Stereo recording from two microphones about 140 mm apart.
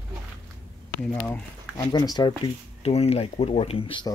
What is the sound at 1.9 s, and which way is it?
Speech, 30° left (ahead or behind).